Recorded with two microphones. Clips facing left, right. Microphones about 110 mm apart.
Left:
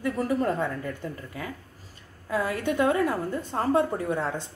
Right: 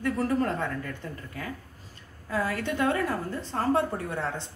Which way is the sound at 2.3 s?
20° left (ahead or behind).